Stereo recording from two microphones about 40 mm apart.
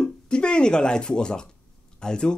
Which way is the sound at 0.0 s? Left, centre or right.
Left.